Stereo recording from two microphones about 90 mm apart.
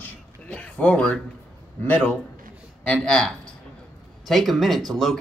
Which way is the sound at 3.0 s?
5° left (ahead or behind).